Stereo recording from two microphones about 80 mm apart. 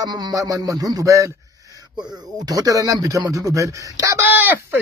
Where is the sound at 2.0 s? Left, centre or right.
Right.